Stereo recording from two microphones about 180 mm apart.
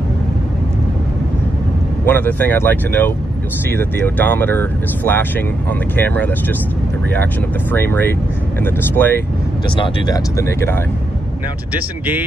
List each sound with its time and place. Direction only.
2.0 s speech: 10° left (ahead or behind)
7.7 s speech: 10° left (ahead or behind)
9.8 s speech: 20° left (ahead or behind)
11.7 s speech: 10° right (ahead or behind)